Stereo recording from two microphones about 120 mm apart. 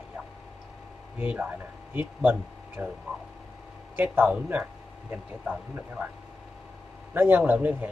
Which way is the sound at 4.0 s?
15° right (ahead or behind).